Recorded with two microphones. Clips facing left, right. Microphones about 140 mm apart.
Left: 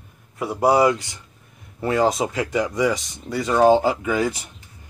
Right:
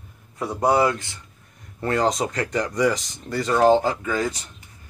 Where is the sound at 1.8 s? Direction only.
5° left (ahead or behind).